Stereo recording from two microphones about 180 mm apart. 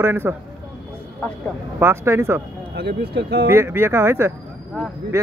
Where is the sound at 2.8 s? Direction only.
70° right (ahead or behind).